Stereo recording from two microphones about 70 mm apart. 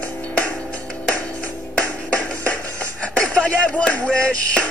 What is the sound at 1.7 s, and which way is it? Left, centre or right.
Music, centre.